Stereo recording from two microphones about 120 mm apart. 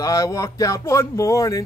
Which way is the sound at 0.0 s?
25° left (ahead or behind).